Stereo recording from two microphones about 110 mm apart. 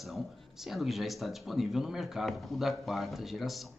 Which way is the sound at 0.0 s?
Centre (ahead or behind).